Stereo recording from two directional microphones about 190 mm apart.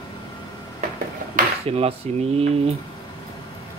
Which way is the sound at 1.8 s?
30° right (ahead or behind).